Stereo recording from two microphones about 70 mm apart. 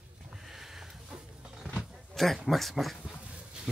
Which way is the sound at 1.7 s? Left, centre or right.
Centre.